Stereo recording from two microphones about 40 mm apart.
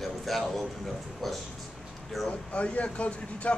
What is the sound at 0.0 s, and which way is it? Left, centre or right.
A man's voice, centre.